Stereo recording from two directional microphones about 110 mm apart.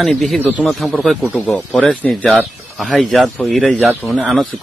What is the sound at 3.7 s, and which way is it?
Speech, 15° right (ahead or behind).